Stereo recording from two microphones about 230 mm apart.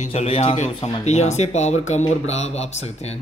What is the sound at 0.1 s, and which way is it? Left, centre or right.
Speech, left.